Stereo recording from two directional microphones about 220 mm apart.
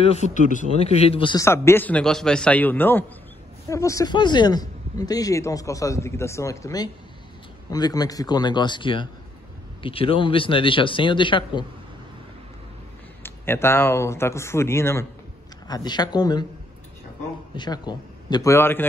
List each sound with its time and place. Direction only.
0.0 s a man's voice: 30° left (ahead or behind)
13.2 s a man's voice: 10° left (ahead or behind)
17.6 s a man's voice: 20° left (ahead or behind)